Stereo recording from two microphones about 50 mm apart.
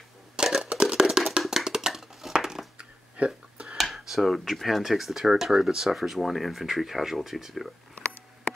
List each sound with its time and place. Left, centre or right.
0.4 s a sound: centre
2.3 s crushing: centre
3.2 s speech: right
3.7 s speech: centre